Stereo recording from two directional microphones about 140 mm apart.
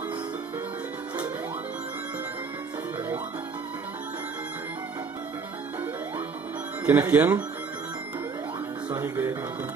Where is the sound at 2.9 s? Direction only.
15° right (ahead or behind).